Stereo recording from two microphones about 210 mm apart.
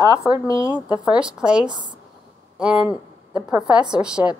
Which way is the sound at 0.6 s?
5° right (ahead or behind).